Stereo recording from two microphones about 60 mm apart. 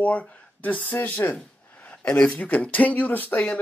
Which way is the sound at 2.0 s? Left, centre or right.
Centre.